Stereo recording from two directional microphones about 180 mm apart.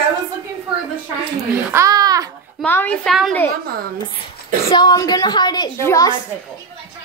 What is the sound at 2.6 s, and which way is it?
Speech, 10° left (ahead or behind).